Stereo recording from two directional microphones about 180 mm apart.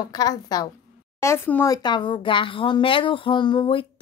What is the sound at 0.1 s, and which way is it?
A woman's voice, 20° left (ahead or behind).